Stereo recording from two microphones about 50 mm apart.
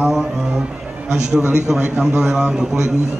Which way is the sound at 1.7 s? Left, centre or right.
Centre.